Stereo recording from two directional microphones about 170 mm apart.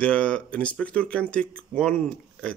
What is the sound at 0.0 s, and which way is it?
Speech, 5° left (ahead or behind).